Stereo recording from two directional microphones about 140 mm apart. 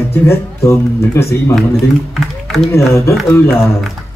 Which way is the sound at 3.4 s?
20° left (ahead or behind).